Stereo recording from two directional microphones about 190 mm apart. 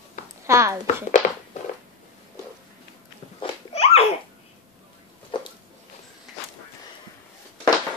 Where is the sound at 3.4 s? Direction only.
30° left (ahead or behind).